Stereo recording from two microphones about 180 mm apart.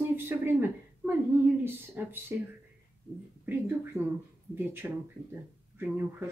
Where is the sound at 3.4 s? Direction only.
10° right (ahead or behind).